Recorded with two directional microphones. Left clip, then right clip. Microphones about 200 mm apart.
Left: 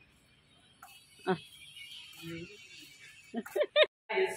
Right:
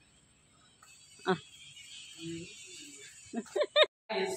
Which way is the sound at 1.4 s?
20° right (ahead or behind).